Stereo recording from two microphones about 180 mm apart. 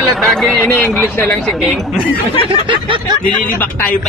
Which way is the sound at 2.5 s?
25° right (ahead or behind).